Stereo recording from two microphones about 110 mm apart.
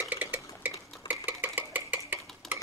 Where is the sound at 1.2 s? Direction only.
15° right (ahead or behind).